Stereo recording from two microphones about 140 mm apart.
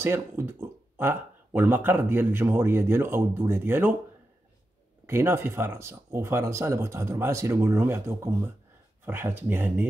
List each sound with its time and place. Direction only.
0.0 s speech: 15° right (ahead or behind)
5.0 s speech: 15° right (ahead or behind)